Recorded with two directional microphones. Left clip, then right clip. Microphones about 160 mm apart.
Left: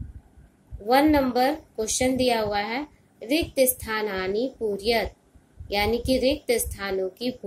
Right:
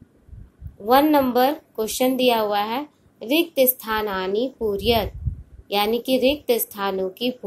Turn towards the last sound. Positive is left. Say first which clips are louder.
# right 4 dB
turn(degrees=-20)  # may be behind; listen again after turning